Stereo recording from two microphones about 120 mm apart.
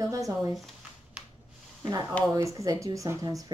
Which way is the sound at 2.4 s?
25° right (ahead or behind).